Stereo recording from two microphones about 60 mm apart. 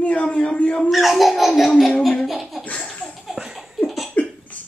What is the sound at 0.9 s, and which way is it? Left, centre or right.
Laughter, centre.